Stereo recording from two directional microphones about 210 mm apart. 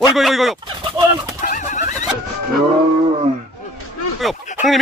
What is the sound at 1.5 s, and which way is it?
Pigeon, 35° left (ahead or behind).